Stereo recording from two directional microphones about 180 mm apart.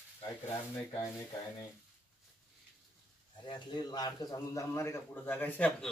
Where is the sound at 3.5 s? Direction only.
25° left (ahead or behind); by 5.9 s 10° left (ahead or behind).